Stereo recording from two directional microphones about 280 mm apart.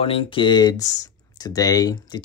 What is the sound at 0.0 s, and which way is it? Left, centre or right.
Speech, centre.